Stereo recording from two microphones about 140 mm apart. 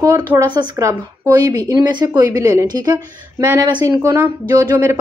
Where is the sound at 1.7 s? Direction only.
30° right (ahead or behind).